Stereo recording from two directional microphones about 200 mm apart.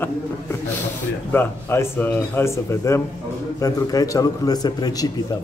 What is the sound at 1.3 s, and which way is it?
A man's voice, 10° left (ahead or behind).